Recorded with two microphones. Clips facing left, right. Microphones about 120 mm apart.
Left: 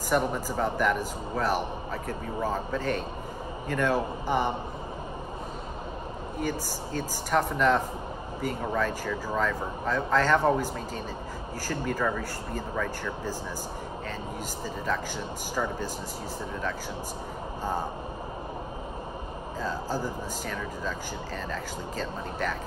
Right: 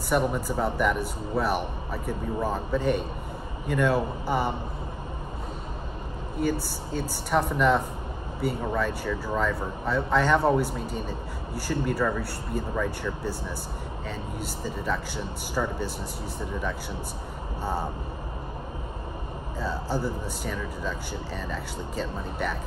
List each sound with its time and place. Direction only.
0.1 s a man's voice: 5° right (ahead or behind)
7.0 s speech: 10° right (ahead or behind)
19.6 s speech: 10° right (ahead or behind)